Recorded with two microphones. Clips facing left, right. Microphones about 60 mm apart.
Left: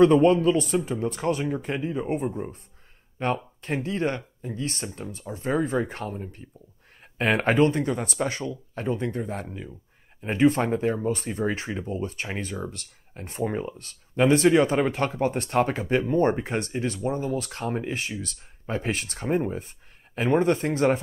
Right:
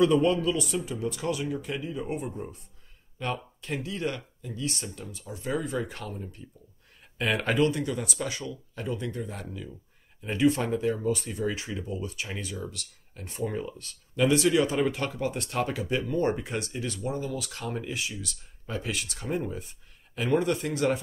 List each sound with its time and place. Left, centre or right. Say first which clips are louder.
0.0 s speech: left 5 dB; left